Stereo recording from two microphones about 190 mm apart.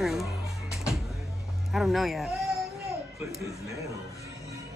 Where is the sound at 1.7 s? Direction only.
Centre (ahead or behind).